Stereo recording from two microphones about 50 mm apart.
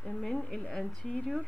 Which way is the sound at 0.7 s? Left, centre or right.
Centre.